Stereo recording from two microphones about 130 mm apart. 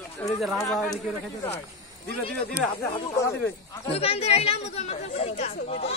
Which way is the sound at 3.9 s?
50° left (ahead or behind).